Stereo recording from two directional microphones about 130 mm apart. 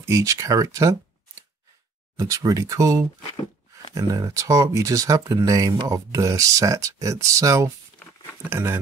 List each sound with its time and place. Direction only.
0.0 s speech: 25° right (ahead or behind)
2.1 s speech: 25° right (ahead or behind)